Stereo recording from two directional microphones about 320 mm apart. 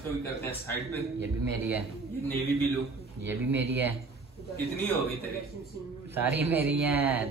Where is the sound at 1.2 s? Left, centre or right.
Centre.